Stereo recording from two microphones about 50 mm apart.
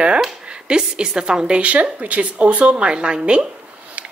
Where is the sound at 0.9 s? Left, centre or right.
Centre.